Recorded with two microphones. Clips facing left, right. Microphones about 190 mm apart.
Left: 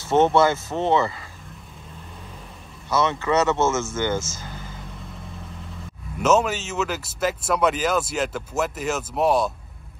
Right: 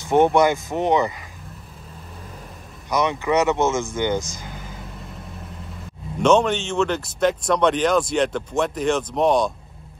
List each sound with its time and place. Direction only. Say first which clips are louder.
0.0 s speech: right 1 dB; 15° right (ahead or behind)
2.9 s speech: right 1 dB; 15° right (ahead or behind)
6.2 s speech: right 3 dB; 5° left (ahead or behind)